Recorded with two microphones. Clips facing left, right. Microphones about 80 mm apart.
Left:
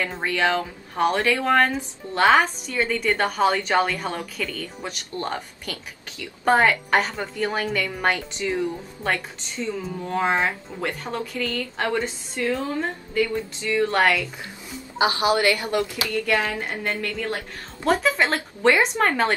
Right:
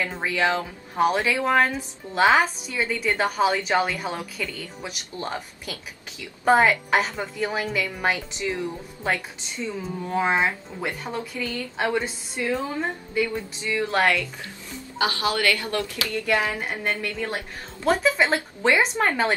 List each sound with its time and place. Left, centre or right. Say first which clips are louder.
0.0 s a woman's voice: left 1 dB; centre
15.0 s a woman's voice: left 4 dB; left
16.3 s speech: right 2 dB; centre
17.8 s a woman's voice: even; centre